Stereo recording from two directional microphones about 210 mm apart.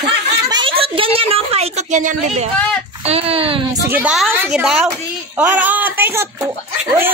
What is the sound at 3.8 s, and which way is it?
A child's voice, 5° right (ahead or behind).